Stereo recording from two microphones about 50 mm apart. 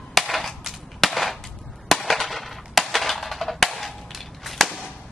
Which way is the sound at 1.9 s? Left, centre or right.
Centre.